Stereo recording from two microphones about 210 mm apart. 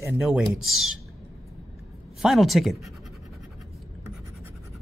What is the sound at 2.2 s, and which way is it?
Speech, centre (ahead or behind).